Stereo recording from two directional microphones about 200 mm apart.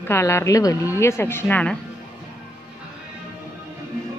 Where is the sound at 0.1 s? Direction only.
15° left (ahead or behind).